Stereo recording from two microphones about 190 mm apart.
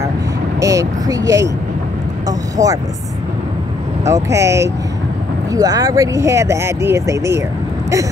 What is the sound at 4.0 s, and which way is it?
Speech, 15° right (ahead or behind).